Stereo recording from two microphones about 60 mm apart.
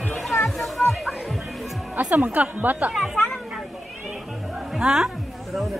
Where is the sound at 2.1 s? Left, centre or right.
Right.